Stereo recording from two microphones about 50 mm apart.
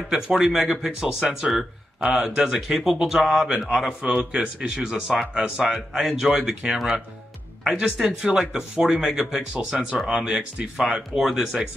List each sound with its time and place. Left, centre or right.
0.1 s speech: centre
4.2 s speech: centre